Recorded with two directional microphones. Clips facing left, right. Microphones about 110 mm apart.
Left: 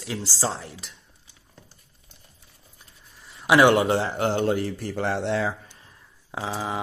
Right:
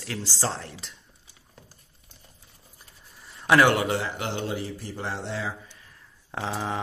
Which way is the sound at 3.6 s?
25° left (ahead or behind).